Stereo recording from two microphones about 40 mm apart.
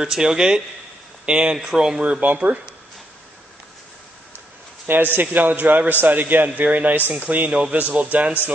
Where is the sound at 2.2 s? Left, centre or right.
Right.